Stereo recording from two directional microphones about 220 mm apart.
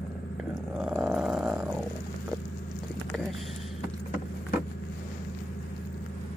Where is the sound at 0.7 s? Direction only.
5° right (ahead or behind).